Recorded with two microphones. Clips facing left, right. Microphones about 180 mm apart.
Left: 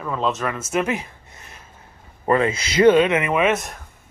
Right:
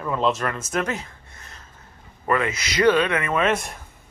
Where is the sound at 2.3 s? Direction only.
30° left (ahead or behind); by 3.8 s 5° left (ahead or behind).